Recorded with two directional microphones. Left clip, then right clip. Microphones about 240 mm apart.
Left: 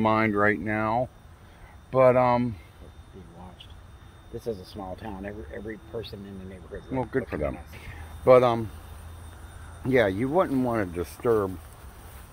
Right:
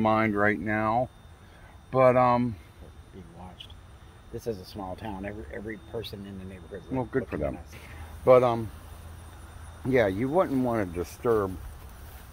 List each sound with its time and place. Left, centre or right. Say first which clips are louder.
0.0 s speech: left 1 dB; centre
4.4 s speech: left 1 dB; right
6.9 s speech: left 1 dB; centre
9.8 s speech: left 1 dB; centre